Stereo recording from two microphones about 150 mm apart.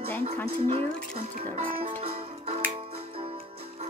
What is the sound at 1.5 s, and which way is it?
Music, 40° right (ahead or behind).